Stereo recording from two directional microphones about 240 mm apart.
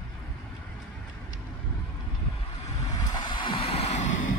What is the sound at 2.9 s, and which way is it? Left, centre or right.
Vehicle, centre.